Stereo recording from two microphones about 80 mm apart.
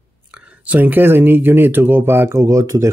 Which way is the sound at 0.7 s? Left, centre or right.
Right.